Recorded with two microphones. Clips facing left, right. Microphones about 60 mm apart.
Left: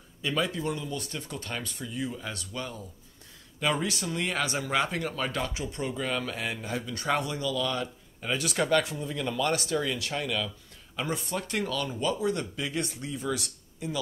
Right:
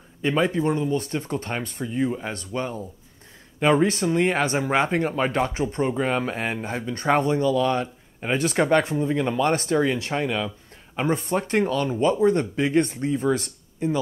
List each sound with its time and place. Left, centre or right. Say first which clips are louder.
0.2 s speech: right 8 dB; right